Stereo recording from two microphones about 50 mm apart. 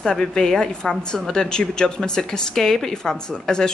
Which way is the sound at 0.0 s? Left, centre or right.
Centre.